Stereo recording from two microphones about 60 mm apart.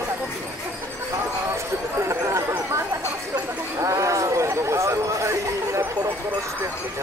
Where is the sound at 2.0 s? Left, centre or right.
Right.